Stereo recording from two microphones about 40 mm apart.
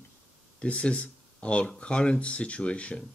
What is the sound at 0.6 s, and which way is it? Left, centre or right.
Speech, left.